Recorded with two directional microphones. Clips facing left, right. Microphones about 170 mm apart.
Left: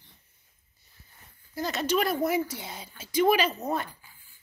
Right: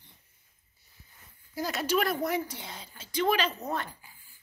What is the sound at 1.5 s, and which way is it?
Speech, 10° right (ahead or behind).